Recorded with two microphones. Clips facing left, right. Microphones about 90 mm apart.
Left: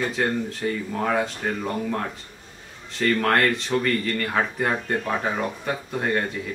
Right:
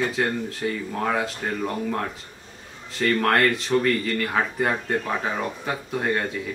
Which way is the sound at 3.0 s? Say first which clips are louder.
Even; centre (ahead or behind).